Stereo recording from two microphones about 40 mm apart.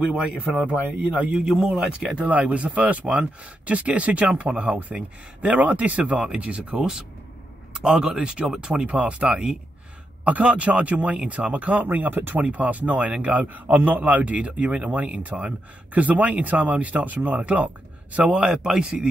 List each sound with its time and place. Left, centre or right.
0.0 s speech: right
1.3 s speech: centre
2.2 s a man's voice: right
6.8 s speech: centre
8.9 s speech: right
10.2 s a man's voice: right
12.4 s a man's voice: right
18.3 s speech: right